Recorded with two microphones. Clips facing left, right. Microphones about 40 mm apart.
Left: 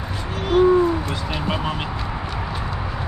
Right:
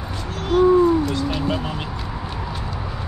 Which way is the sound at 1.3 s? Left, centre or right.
Centre.